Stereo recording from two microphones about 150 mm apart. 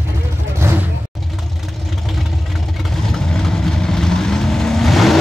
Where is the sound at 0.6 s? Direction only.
15° right (ahead or behind).